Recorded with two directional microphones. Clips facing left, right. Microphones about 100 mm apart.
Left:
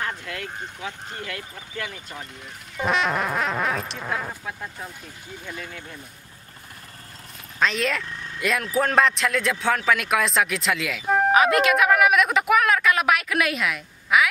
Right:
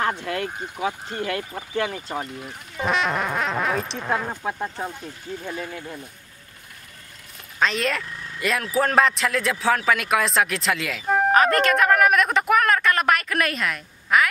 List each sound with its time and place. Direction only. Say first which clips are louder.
0.7 s speech: right 7 dB; 50° right (ahead or behind)
2.4 s a man's voice: even; centre (ahead or behind)
4.5 s speech: right 7 dB; 40° right (ahead or behind)
7.5 s a man's voice: right 1 dB; centre (ahead or behind)